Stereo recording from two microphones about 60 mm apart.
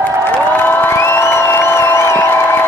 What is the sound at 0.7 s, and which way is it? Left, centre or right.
Crowd, left.